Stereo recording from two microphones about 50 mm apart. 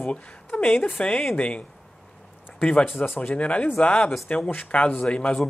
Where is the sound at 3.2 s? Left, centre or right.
Left.